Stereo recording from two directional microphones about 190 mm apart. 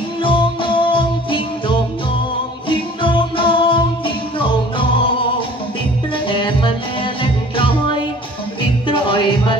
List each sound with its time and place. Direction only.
0.2 s music: 25° left (ahead or behind)
6.2 s music: 25° left (ahead or behind)
8.8 s music: 25° left (ahead or behind)